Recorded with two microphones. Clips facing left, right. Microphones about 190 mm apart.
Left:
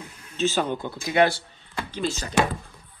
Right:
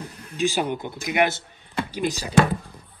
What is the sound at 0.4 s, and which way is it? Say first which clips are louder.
Speech: right 1 dB; 15° right (ahead or behind).